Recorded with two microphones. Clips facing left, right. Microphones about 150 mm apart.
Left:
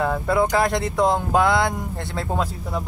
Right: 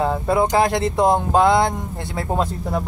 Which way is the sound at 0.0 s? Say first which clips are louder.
Right 2 dB; 20° right (ahead or behind).